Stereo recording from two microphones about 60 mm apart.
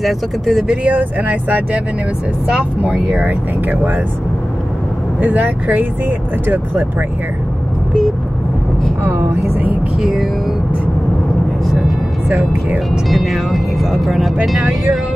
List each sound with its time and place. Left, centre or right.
0.0 s speech: centre
0.7 s speech: right
5.2 s speech: right
13.1 s speech: centre